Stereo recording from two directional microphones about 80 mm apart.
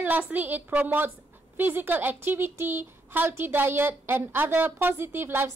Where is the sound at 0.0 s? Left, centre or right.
Right.